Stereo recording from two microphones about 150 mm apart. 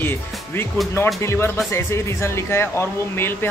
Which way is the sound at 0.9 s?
15° left (ahead or behind).